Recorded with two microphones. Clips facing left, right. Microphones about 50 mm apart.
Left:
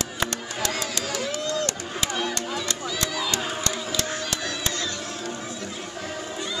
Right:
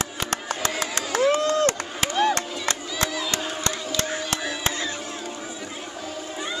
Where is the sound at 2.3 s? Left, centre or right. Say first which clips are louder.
Right 2 dB; right.